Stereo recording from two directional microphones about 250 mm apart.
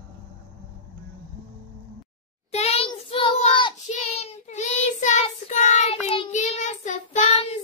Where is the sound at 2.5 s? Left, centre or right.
Left.